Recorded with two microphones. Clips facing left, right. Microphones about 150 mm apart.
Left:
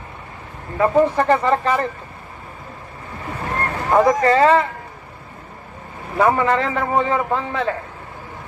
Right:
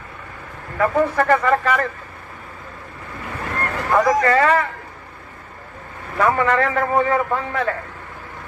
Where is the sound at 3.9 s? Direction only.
25° left (ahead or behind).